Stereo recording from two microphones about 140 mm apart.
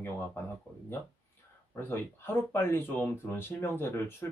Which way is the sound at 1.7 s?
15° left (ahead or behind).